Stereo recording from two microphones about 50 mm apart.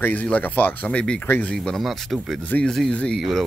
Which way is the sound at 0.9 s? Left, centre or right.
Left.